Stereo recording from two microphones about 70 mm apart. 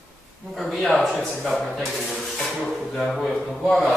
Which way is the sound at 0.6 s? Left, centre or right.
Centre.